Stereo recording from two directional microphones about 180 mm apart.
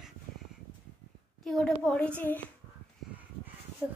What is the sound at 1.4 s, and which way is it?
A woman's voice, 5° left (ahead or behind).